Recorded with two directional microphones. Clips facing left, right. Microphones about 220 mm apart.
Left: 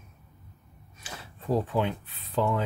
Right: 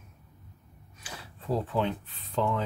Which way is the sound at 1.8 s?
10° left (ahead or behind).